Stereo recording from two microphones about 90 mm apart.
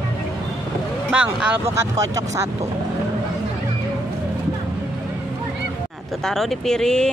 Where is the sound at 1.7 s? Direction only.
35° right (ahead or behind).